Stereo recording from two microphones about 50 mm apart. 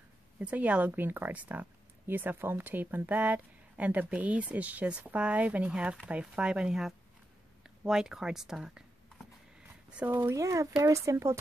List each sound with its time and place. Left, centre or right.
0.4 s a woman's voice: right
5.7 s speech: right
10.0 s a woman's voice: right
10.3 s speech: right